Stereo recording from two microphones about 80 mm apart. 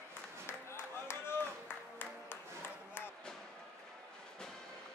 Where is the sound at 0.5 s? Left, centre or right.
Left.